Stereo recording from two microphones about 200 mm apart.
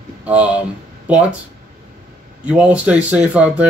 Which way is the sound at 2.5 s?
5° right (ahead or behind).